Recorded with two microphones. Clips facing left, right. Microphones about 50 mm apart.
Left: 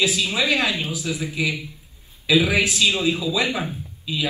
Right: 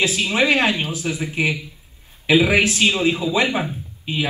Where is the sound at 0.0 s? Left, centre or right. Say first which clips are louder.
Right 3 dB; right.